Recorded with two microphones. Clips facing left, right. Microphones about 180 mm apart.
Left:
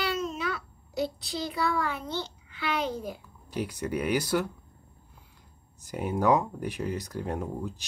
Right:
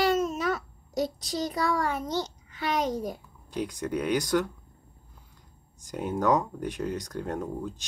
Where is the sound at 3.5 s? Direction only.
10° left (ahead or behind).